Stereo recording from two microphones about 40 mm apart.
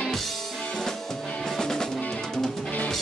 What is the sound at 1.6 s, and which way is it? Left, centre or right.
Music, centre.